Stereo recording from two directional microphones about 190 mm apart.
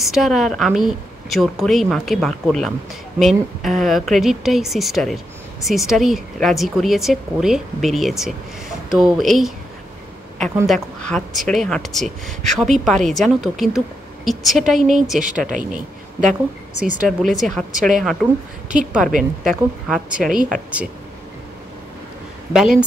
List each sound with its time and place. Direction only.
0.0 s a woman's voice: centre (ahead or behind)
10.7 s a woman's voice: 5° left (ahead or behind)
15.1 s a woman's voice: 45° right (ahead or behind)
17.2 s a woman's voice: centre (ahead or behind)
20.1 s a woman's voice: 45° right (ahead or behind)
20.4 s a woman's voice: 5° right (ahead or behind)
22.5 s a woman's voice: 5° right (ahead or behind)